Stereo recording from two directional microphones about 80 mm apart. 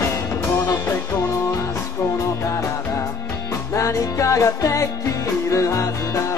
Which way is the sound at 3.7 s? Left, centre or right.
Left.